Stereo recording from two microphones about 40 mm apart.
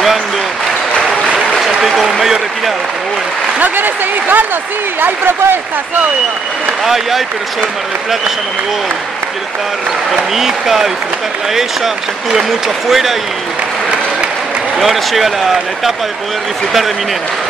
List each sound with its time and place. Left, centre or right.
1.8 s a sound: centre
3.5 s speech: right
5.0 s speech: right
6.8 s speech: centre
10.3 s speech: centre
14.8 s speech: centre